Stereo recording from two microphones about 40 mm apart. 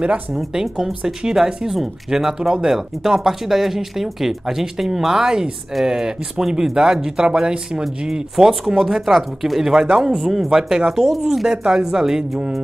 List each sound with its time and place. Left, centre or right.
0.5 s speech: centre